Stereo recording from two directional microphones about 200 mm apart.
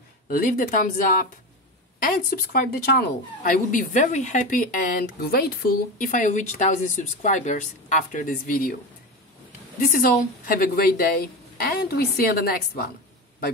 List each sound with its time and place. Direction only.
0.3 s speech: 45° left (ahead or behind)
9.8 s speech: 45° left (ahead or behind)